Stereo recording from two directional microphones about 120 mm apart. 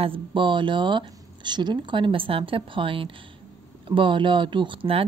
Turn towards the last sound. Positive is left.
turn(degrees=-50)  # may be behind; listen again after turning